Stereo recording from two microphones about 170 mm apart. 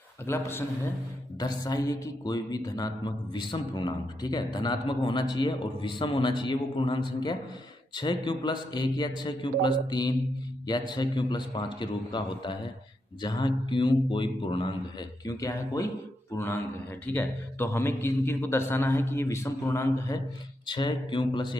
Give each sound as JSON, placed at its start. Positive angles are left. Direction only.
{"t": 0.3, "sound": "a man's voice", "side_deg": 15}
{"t": 17.0, "sound": "a man's voice", "side_deg": 10}